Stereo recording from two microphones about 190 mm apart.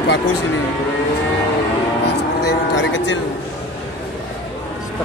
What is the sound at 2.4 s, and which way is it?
Cattle, 70° left (ahead or behind).